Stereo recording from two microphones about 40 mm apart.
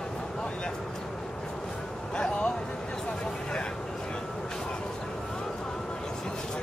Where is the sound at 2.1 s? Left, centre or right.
Left.